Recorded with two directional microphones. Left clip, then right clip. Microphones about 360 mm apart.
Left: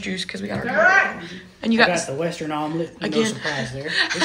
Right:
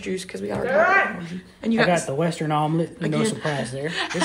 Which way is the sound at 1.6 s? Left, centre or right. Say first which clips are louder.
Left 2 dB; centre.